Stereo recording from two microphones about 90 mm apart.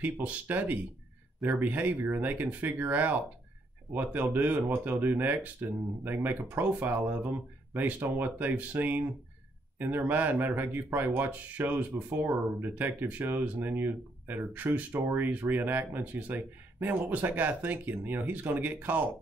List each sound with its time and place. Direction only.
0.0 s speech: 20° right (ahead or behind)